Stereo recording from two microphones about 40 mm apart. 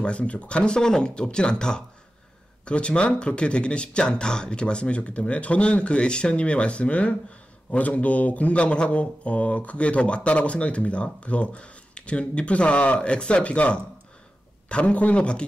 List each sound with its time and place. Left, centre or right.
0.0 s speech: left